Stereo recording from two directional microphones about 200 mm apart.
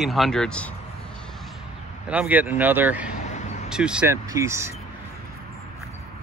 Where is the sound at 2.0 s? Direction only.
5° right (ahead or behind).